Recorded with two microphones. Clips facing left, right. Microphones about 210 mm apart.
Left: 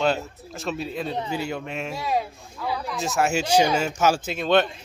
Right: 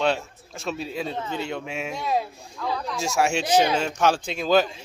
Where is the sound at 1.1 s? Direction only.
15° left (ahead or behind).